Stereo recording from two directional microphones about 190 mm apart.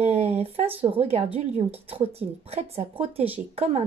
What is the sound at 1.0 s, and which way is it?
Speech, 30° right (ahead or behind).